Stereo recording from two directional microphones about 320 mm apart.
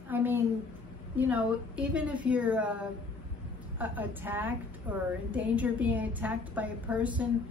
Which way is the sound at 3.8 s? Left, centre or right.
Centre.